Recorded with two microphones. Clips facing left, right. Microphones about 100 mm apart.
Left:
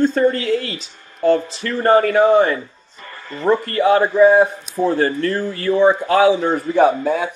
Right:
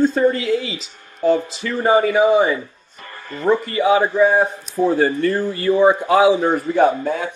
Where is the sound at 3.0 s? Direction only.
15° right (ahead or behind).